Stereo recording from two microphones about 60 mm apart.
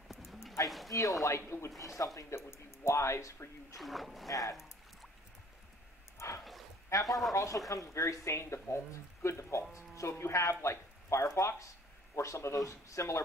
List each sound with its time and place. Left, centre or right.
0.1 s a sound: centre
0.7 s speech: centre
1.2 s speech: left
3.7 s speech: centre
4.3 s speech: left
6.1 s dog: left
7.1 s speech: centre
7.3 s speech: left